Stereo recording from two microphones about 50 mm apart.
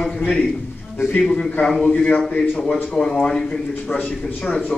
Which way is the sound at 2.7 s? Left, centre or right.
Centre.